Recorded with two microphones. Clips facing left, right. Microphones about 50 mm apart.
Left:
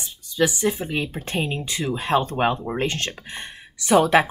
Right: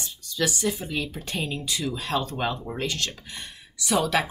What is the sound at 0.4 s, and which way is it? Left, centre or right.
Speech, left.